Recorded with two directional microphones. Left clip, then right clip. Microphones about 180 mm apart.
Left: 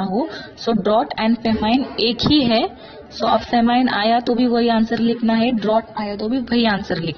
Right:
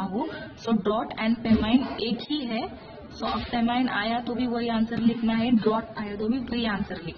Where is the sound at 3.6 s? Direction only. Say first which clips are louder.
Left 9 dB; 30° left (ahead or behind).